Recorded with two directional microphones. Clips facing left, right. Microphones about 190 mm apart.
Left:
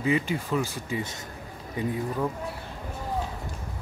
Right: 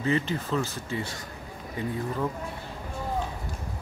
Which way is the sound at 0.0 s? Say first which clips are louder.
Left 1 dB; 10° left (ahead or behind).